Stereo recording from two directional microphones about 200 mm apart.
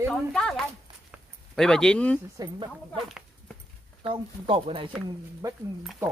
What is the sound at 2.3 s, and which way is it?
Speech, 25° right (ahead or behind).